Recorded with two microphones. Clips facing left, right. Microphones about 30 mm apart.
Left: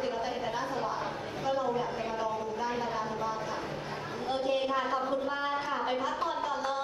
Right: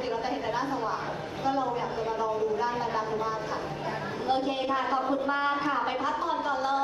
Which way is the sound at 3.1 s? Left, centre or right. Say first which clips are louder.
Right 3 dB; right.